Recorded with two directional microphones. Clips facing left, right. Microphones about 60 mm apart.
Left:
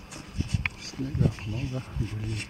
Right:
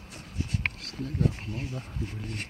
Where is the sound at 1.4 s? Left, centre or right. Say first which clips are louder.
Left 1 dB; right.